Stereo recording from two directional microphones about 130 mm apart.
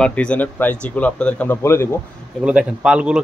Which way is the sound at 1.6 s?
20° left (ahead or behind).